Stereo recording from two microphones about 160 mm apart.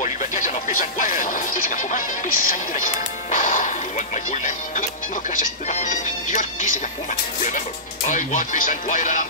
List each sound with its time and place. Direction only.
0.0 s speech: 50° left (ahead or behind)
3.3 s music: 50° left (ahead or behind)
5.3 s speech: 50° left (ahead or behind)